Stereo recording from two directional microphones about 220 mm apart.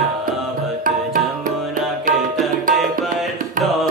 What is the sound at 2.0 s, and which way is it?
Tabla, 40° right (ahead or behind).